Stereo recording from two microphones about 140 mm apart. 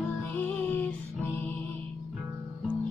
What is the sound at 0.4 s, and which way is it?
Music, 10° left (ahead or behind).